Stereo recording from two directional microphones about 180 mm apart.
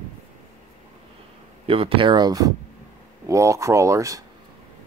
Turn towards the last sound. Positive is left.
turn(degrees=-15)  # may be behind; listen again after turning